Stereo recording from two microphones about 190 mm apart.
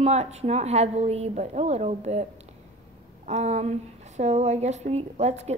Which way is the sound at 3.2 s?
35° right (ahead or behind).